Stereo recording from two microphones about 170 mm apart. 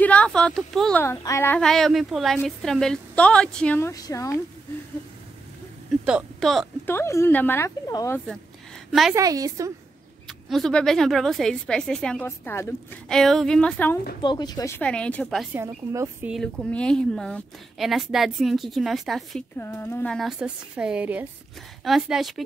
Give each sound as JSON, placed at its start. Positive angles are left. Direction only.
{"t": 0.0, "sound": "a woman's voice", "side_deg": 10}
{"t": 1.0, "sound": "a woman's voice", "side_deg": 15}
{"t": 6.0, "sound": "speech", "side_deg": 0}
{"t": 6.9, "sound": "a woman's voice", "side_deg": 15}
{"t": 9.1, "sound": "a woman's voice", "side_deg": -20}
{"t": 10.2, "sound": "a woman's voice", "side_deg": 0}
{"t": 14.2, "sound": "speech", "side_deg": 25}
{"t": 14.8, "sound": "a woman's voice", "side_deg": 5}
{"t": 15.5, "sound": "speech", "side_deg": -15}
{"t": 16.3, "sound": "a woman's voice", "side_deg": 0}
{"t": 19.6, "sound": "a woman's voice", "side_deg": 15}